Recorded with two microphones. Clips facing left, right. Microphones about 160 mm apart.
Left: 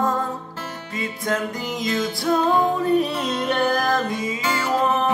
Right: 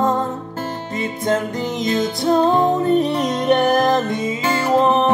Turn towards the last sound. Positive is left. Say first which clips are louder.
# right 5 dB
turn(degrees=-25)  # may be behind; listen again after turning